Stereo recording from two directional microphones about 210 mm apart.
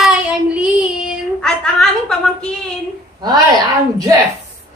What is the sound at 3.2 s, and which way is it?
Speech, 20° right (ahead or behind).